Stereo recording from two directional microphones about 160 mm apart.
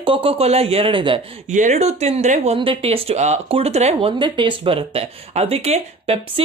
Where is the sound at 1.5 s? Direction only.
50° right (ahead or behind).